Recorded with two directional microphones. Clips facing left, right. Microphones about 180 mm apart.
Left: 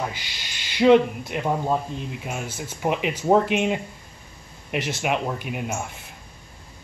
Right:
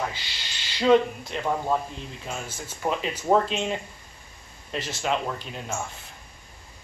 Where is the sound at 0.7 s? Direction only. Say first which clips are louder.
Left 4 dB; 15° left (ahead or behind).